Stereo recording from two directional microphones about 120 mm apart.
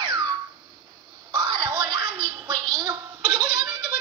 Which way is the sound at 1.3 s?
35° right (ahead or behind).